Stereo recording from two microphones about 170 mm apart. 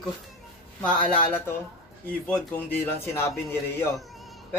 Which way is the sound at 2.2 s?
10° left (ahead or behind).